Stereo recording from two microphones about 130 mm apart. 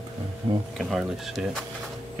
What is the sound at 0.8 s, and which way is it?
Speech, centre (ahead or behind).